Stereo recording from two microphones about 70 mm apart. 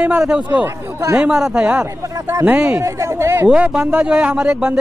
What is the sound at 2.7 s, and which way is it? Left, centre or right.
Speech, right.